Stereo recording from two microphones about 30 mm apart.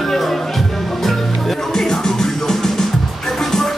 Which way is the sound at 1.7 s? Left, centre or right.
Centre.